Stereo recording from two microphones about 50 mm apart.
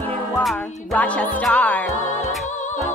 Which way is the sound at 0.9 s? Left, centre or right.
Left.